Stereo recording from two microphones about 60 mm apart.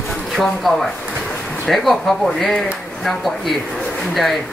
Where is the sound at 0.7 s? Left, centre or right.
Centre.